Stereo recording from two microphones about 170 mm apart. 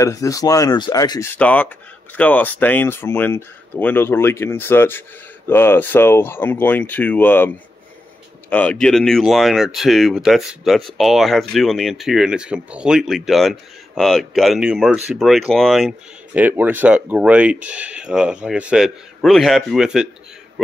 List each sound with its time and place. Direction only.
0.0 s speech: 20° left (ahead or behind)
1.3 s speech: 10° left (ahead or behind)
16.3 s speech: 10° right (ahead or behind)